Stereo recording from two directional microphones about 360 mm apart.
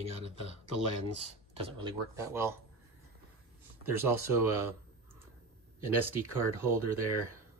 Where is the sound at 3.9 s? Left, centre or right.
Centre.